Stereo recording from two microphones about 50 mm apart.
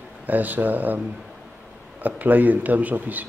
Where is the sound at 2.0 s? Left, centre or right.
Right.